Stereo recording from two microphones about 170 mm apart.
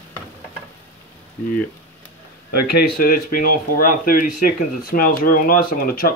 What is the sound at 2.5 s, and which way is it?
Speech, 65° left (ahead or behind).